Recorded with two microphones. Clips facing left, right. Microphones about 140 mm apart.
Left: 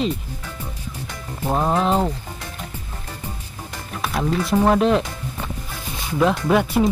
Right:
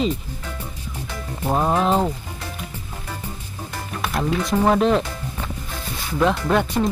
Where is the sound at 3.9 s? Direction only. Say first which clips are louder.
Left 1 dB; centre (ahead or behind).